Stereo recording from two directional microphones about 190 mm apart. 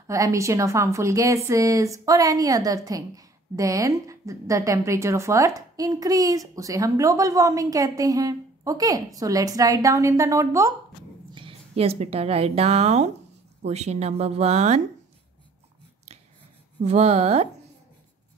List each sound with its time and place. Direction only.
0.0 s a woman's voice: 15° right (ahead or behind)
11.3 s a woman's voice: 30° right (ahead or behind)
16.8 s speech: 35° right (ahead or behind)